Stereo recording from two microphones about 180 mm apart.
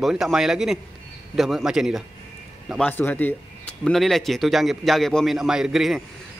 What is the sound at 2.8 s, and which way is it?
A man's voice, 10° left (ahead or behind).